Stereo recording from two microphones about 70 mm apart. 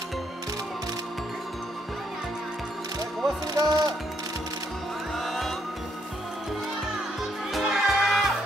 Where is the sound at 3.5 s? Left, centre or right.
Right.